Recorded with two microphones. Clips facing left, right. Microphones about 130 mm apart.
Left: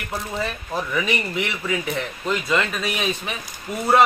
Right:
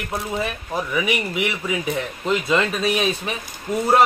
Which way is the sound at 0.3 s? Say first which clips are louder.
Right 1 dB; 10° right (ahead or behind).